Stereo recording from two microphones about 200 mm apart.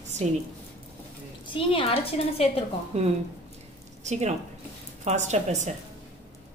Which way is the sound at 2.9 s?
35° right (ahead or behind).